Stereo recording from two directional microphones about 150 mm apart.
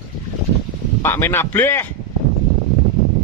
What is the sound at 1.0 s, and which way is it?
Speech, 15° left (ahead or behind).